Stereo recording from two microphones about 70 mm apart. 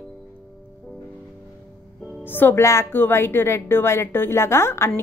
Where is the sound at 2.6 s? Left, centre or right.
Left.